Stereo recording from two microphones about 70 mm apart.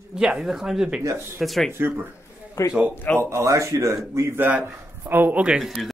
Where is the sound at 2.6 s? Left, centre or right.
Left.